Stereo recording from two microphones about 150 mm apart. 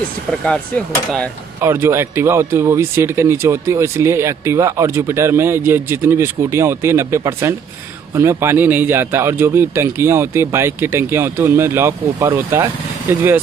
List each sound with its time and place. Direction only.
1.6 s speech: 15° right (ahead or behind)